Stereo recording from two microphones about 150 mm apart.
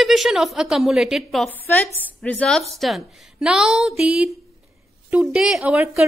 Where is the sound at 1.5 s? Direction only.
10° left (ahead or behind).